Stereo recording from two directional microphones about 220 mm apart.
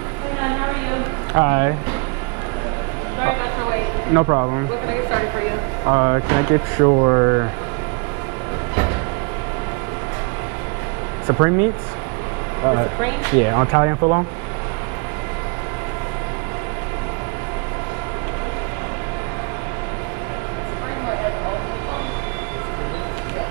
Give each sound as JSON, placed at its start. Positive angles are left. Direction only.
{"t": 1.3, "sound": "speech", "side_deg": -15}
{"t": 4.1, "sound": "speech", "side_deg": -20}
{"t": 5.9, "sound": "speech", "side_deg": -20}
{"t": 11.2, "sound": "speech", "side_deg": -15}
{"t": 12.6, "sound": "speech", "side_deg": -20}